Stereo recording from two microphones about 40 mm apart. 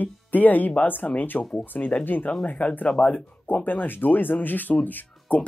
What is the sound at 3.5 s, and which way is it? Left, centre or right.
Speech, left.